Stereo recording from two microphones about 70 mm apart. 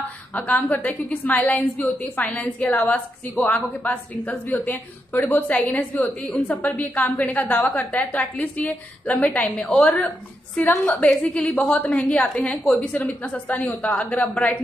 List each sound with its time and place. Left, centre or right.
0.3 s a woman's voice: left